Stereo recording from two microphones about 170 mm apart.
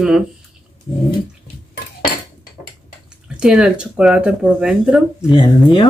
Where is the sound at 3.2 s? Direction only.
5° right (ahead or behind).